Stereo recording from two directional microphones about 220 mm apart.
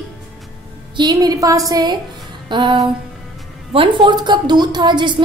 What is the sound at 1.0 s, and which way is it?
A woman's voice, 20° right (ahead or behind).